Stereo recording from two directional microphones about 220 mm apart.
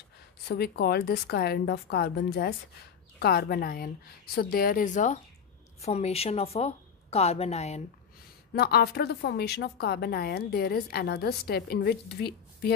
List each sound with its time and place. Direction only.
0.5 s a woman's voice: 45° left (ahead or behind); by 7.8 s 30° left (ahead or behind)
8.5 s a woman's voice: 45° left (ahead or behind)